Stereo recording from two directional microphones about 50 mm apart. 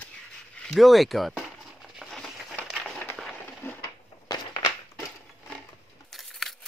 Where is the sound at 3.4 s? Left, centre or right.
Left.